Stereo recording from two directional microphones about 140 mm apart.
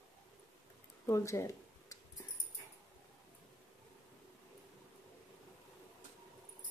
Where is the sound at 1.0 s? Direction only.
20° left (ahead or behind).